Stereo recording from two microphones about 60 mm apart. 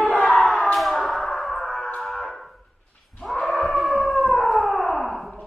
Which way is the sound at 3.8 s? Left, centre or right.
Centre.